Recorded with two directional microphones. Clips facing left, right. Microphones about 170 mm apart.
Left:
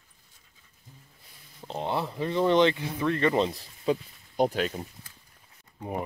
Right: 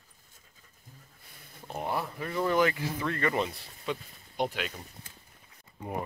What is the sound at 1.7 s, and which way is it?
Speech, 25° left (ahead or behind).